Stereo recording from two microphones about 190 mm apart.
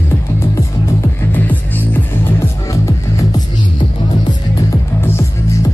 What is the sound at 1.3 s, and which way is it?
Music, 10° left (ahead or behind).